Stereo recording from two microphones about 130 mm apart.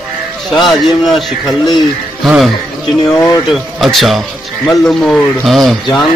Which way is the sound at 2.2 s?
Centre (ahead or behind).